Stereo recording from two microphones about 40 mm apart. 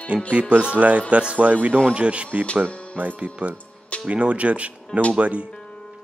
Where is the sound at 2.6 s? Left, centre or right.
Right.